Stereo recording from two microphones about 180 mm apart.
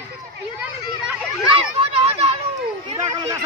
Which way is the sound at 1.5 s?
30° right (ahead or behind).